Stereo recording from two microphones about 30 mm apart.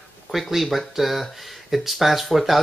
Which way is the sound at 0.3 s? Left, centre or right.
Centre.